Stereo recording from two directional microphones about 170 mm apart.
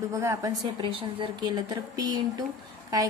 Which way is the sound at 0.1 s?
20° right (ahead or behind).